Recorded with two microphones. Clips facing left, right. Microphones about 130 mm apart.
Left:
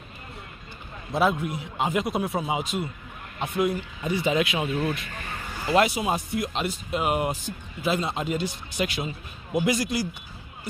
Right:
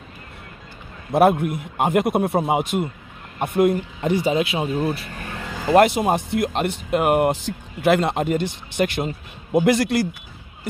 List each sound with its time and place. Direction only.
1.1 s a man's voice: 60° right (ahead or behind)
4.2 s speech: 30° right (ahead or behind)
5.7 s a man's voice: 55° right (ahead or behind)
7.4 s a man's voice: 70° right (ahead or behind)